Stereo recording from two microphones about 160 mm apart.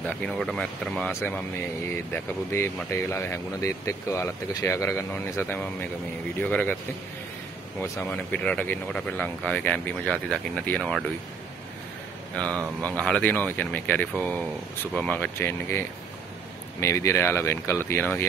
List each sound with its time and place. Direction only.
0.0 s speech: 5° left (ahead or behind)
7.8 s speech: 20° left (ahead or behind); by 11.1 s centre (ahead or behind)
12.8 s speech: 5° left (ahead or behind)
16.8 s speech: 15° left (ahead or behind)